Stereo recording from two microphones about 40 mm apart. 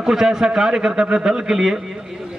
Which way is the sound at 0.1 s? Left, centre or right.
Centre.